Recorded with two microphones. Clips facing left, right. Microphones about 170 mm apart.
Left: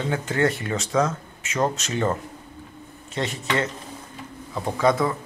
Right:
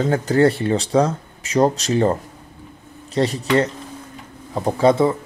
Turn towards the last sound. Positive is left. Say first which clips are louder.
# right 6 dB
turn(degrees=-30)  # may be behind; listen again after turning